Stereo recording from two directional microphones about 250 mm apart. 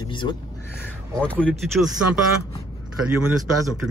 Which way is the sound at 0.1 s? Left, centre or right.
Centre.